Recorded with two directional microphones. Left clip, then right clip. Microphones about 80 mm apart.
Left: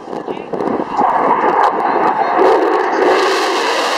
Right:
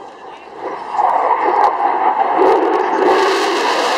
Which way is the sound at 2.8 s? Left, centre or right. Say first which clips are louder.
Even; left.